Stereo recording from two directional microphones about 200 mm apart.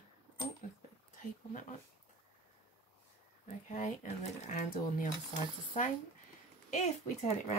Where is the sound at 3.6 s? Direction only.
35° left (ahead or behind).